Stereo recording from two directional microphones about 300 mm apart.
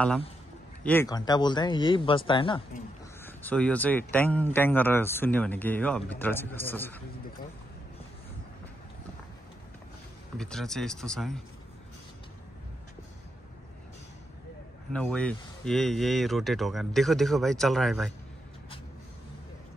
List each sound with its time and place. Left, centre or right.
0.8 s speech: centre
3.3 s speech: centre
10.3 s speech: centre
14.9 s speech: centre